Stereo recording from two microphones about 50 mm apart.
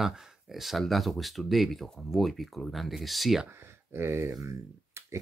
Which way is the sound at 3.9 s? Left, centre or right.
Right.